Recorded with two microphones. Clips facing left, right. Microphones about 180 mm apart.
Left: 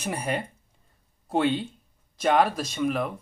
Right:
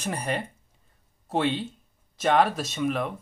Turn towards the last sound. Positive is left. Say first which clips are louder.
# left 1 dB
turn(degrees=0)  # may be behind; listen again after turning